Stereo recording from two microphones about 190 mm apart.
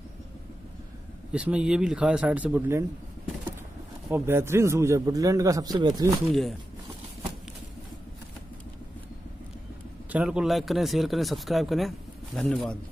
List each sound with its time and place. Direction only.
1.3 s speech: 5° right (ahead or behind)
4.1 s a man's voice: 15° right (ahead or behind)
10.1 s speech: 5° right (ahead or behind)